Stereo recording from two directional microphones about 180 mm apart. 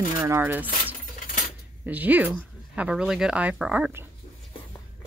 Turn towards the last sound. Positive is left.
turn(degrees=-5)  # may be behind; listen again after turning